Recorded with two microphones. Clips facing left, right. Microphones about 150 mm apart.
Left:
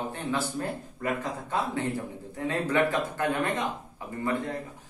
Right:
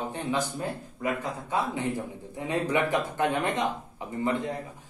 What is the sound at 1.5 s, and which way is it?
Speech, 15° right (ahead or behind).